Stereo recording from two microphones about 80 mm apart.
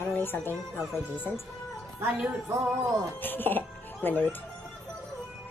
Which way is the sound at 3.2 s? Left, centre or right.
Left.